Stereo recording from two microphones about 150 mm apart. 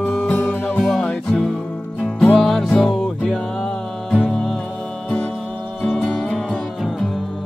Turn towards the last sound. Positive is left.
turn(degrees=0)  # may be behind; listen again after turning